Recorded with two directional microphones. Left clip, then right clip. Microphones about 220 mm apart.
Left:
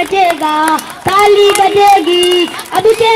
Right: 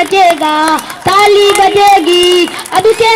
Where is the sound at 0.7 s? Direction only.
35° right (ahead or behind).